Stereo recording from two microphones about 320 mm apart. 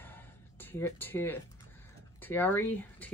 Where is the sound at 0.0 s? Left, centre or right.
Centre.